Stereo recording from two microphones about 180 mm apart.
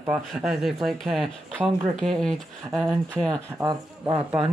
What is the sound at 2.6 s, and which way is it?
Speech, 20° right (ahead or behind).